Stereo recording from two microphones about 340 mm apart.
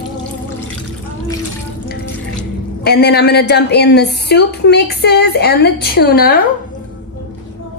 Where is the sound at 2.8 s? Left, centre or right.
Left.